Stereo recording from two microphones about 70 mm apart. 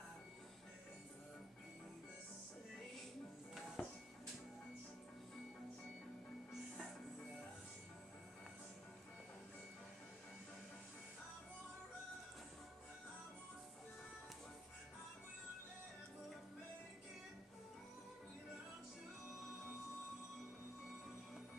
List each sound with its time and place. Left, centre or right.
3.8 s music: centre